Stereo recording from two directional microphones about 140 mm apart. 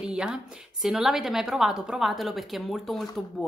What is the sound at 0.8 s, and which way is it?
A woman's voice, centre (ahead or behind).